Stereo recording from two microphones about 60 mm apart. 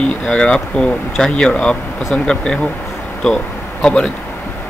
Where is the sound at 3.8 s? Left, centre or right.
Centre.